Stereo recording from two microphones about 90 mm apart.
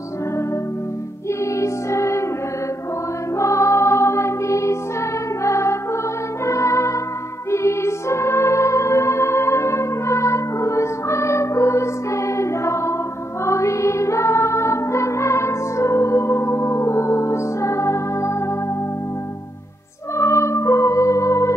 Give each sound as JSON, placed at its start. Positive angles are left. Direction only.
{"t": 1.6, "sound": "music", "side_deg": 35}
{"t": 3.3, "sound": "music", "side_deg": 35}
{"t": 20.2, "sound": "music", "side_deg": 30}